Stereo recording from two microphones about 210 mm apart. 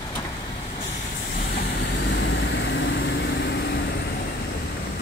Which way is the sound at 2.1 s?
60° left (ahead or behind).